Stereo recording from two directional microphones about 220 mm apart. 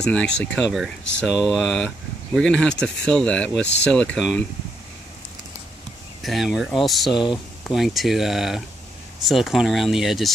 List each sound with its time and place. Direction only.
0.1 s speech: 5° left (ahead or behind)
6.2 s speech: centre (ahead or behind)
7.1 s speech: 20° left (ahead or behind)
7.6 s speech: centre (ahead or behind)